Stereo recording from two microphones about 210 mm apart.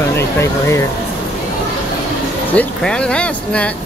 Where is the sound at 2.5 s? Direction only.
5° left (ahead or behind).